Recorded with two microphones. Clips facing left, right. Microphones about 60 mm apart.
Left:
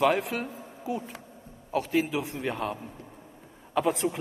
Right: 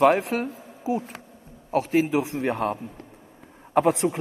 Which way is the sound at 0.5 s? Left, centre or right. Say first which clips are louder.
Right 6 dB; right.